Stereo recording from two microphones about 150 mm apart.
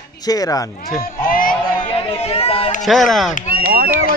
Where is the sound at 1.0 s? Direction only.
70° left (ahead or behind).